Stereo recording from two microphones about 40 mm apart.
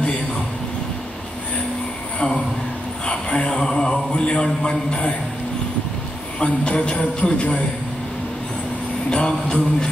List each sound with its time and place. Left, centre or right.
3.1 s a man's voice: left
6.4 s a man's voice: left
9.1 s a man's voice: left